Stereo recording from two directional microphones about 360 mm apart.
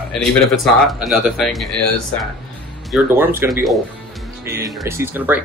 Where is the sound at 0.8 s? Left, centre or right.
Centre.